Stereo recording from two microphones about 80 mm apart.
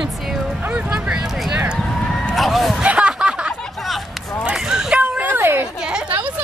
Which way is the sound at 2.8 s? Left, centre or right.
Centre.